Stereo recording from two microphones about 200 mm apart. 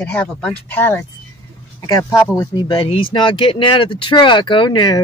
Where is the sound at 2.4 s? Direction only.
20° left (ahead or behind).